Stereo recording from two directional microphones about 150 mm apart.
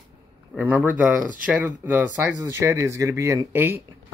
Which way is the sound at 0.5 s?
10° right (ahead or behind).